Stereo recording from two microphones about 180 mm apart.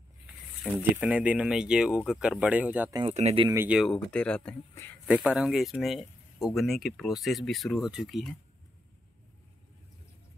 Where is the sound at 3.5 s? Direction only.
10° right (ahead or behind); by 4.9 s 10° left (ahead or behind).